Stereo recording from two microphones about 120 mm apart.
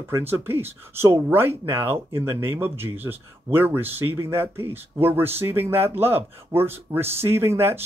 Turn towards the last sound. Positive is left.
turn(degrees=-20)  # may be behind; listen again after turning